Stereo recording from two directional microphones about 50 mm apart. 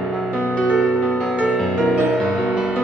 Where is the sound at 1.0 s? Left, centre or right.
Left.